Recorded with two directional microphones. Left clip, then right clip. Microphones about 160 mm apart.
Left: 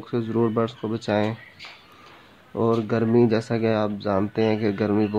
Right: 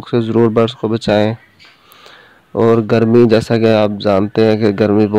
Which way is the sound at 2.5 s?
50° right (ahead or behind).